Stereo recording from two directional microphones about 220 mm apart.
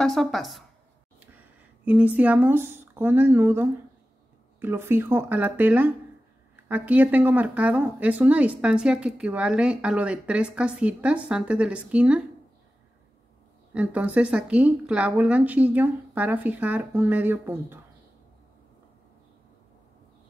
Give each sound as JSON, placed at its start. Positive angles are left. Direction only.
{"t": 0.0, "sound": "speech", "side_deg": 0}
{"t": 1.9, "sound": "speech", "side_deg": -5}
{"t": 13.7, "sound": "speech", "side_deg": -5}